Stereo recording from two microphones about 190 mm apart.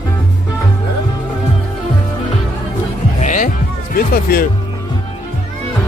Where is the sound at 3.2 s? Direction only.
40° left (ahead or behind).